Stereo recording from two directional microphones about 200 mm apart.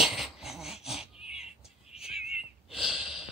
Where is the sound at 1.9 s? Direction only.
30° left (ahead or behind).